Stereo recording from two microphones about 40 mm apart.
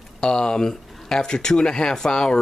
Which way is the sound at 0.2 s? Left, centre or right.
Centre.